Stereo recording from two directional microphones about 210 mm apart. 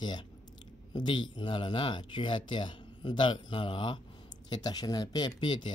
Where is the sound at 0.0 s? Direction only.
20° left (ahead or behind).